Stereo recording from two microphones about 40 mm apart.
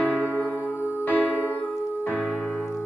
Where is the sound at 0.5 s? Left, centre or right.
Right.